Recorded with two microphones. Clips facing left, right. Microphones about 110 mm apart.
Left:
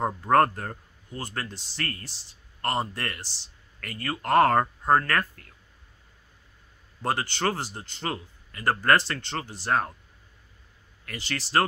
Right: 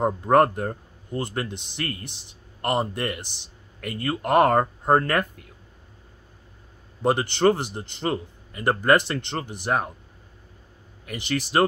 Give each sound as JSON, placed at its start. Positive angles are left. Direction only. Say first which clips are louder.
{"t": 0.0, "sound": "speech", "louder": "right 3 dB", "side_deg": -15}
{"t": 7.0, "sound": "speech", "louder": "right 7 dB", "side_deg": -20}
{"t": 11.1, "sound": "speech", "louder": "right 6 dB", "side_deg": -15}